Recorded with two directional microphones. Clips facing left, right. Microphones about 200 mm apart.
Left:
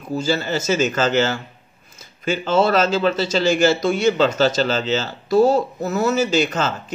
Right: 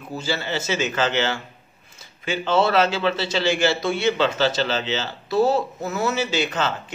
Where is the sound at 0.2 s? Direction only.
45° left (ahead or behind).